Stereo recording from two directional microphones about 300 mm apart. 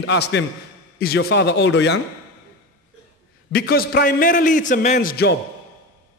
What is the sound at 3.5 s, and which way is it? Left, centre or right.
A man's voice, left.